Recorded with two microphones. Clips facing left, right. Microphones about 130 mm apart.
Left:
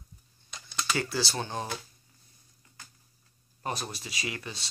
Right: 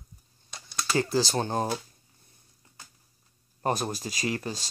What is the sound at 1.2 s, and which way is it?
Speech, 40° right (ahead or behind).